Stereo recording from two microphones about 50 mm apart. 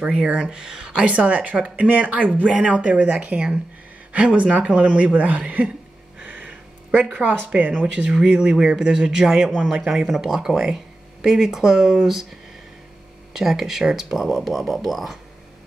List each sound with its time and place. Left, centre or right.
0.0 s speech: right
2.4 s speech: centre
2.7 s speech: right
6.1 s a sound: right
7.2 s speech: right
8.1 s speech: centre
13.3 s speech: centre